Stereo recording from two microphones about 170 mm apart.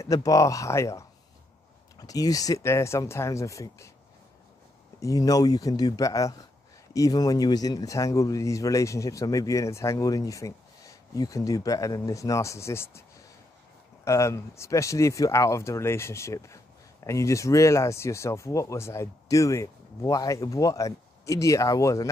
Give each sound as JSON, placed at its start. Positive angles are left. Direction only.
{"t": 0.0, "sound": "speech", "side_deg": 20}
{"t": 5.0, "sound": "speech", "side_deg": 20}
{"t": 14.0, "sound": "speech", "side_deg": 15}